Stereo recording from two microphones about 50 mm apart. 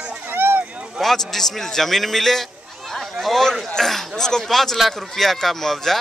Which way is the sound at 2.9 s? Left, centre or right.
Centre.